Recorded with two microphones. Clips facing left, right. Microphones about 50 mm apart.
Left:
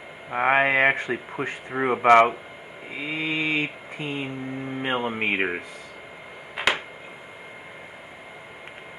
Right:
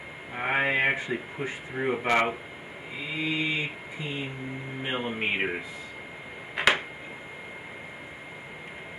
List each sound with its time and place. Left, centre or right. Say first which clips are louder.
0.3 s speech: left 6 dB; left
4.8 s speech: left 4 dB; left
6.5 s a sound: right 1 dB; centre